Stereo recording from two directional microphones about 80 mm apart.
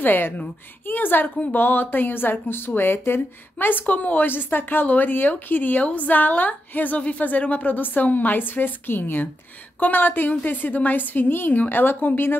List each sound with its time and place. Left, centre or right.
0.0 s a woman's voice: left